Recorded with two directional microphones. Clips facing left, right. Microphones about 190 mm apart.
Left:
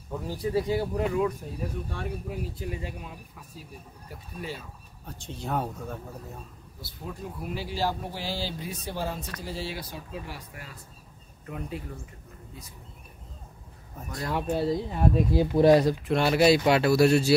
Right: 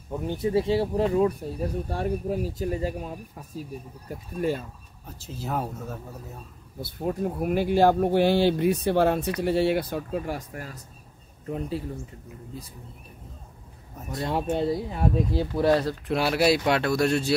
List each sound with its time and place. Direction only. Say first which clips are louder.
0.1 s speech: right 3 dB; 20° right (ahead or behind); by 4.6 s 50° right (ahead or behind)
5.0 s speech: right 1 dB; 5° right (ahead or behind)
6.8 s speech: right 11 dB; 55° right (ahead or behind)
11.4 s speech: right 6 dB; 30° right (ahead or behind)
14.2 s speech: right 2 dB; 25° right (ahead or behind)
14.9 s speech: even; centre (ahead or behind)
15.3 s speech: left 5 dB; 15° left (ahead or behind)
16.1 s speech: even; centre (ahead or behind)